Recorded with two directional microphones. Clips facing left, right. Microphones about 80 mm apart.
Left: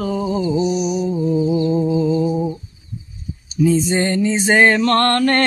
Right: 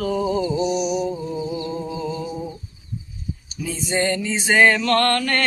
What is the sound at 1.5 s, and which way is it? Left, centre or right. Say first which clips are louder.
Mantra: left 10 dB; left.